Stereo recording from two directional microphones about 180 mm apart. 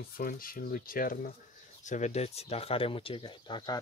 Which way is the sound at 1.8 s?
40° left (ahead or behind).